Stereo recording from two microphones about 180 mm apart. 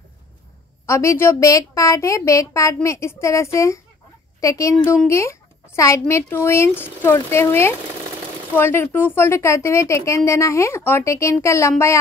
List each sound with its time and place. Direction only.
0.8 s a woman's voice: 15° left (ahead or behind)